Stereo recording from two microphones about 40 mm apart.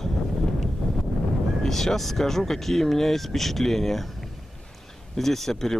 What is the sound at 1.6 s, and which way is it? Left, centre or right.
Speech, centre.